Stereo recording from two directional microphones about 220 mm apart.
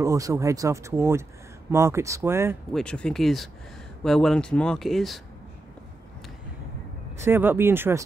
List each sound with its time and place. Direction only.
0.0 s speech: 15° right (ahead or behind)
2.7 s speech: 5° left (ahead or behind)
7.2 s speech: 10° right (ahead or behind)